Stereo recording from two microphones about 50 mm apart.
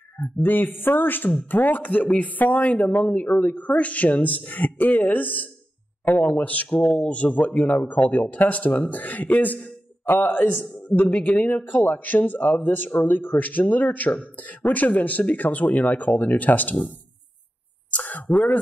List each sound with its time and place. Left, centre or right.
0.2 s speech: left
10.8 s speech: left
17.9 s speech: left